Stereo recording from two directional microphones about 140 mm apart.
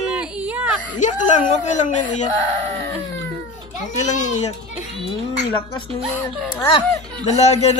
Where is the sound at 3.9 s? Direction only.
60° left (ahead or behind).